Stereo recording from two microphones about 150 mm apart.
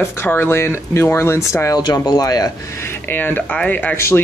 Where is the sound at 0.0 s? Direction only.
10° left (ahead or behind).